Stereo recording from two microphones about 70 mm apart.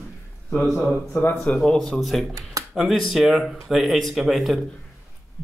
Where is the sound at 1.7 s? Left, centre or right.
Centre.